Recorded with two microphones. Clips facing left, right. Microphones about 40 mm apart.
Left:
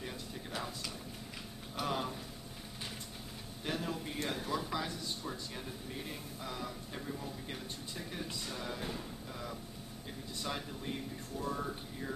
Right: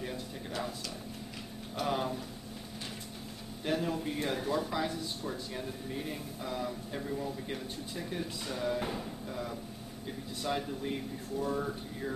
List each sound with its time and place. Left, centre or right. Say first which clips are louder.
1.8 s speech: right 4 dB; centre
3.6 s speech: right 6 dB; centre
8.7 s speech: right 6 dB; right
10.4 s speech: right 6 dB; centre